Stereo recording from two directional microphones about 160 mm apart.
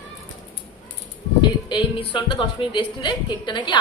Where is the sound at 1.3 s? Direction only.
30° left (ahead or behind).